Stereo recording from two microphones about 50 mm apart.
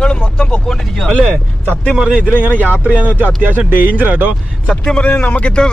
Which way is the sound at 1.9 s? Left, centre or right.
Centre.